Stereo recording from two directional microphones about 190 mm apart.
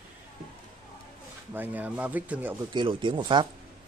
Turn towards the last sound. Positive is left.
turn(degrees=-25)  # may be behind; listen again after turning